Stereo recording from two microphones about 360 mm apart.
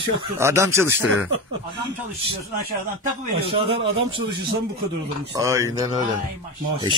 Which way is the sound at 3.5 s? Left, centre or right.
Centre.